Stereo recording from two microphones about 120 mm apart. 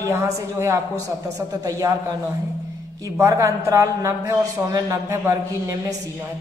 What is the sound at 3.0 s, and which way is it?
Speech, 25° right (ahead or behind).